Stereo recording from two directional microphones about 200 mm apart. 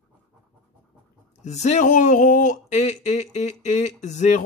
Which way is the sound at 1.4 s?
35° left (ahead or behind).